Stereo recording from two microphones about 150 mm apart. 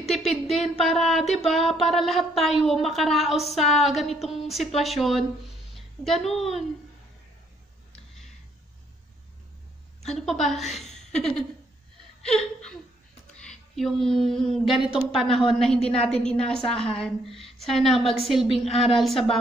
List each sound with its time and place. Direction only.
0.5 s a woman's voice: centre (ahead or behind)
10.0 s a woman's voice: centre (ahead or behind)
12.3 s laughter: 5° left (ahead or behind)
13.4 s speech: 5° left (ahead or behind)
15.8 s a woman's voice: 40° left (ahead or behind)
16.1 s speech: 5° left (ahead or behind)